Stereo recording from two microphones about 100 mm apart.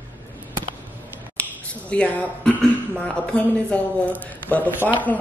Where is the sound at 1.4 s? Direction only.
15° left (ahead or behind).